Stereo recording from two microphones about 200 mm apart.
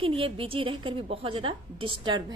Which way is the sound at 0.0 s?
25° right (ahead or behind).